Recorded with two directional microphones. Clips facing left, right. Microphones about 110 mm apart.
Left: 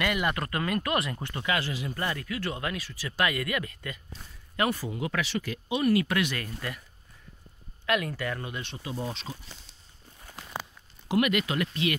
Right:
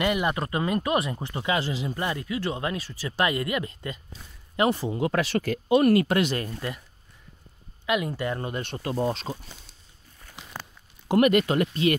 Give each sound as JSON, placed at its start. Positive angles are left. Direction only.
{"t": 0.0, "sound": "speech", "side_deg": -25}
{"t": 6.0, "sound": "speech", "side_deg": -35}
{"t": 7.8, "sound": "speech", "side_deg": -20}
{"t": 8.5, "sound": "speech", "side_deg": -45}
{"t": 11.1, "sound": "speech", "side_deg": -40}